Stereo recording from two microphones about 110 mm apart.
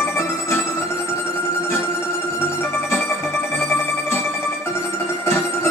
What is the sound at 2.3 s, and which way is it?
Music, 20° left (ahead or behind).